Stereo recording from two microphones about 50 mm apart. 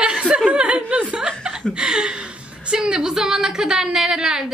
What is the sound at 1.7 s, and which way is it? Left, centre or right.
A woman's voice, centre.